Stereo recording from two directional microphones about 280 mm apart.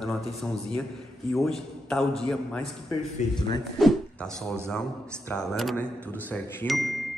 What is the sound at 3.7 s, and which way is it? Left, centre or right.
Speech, centre.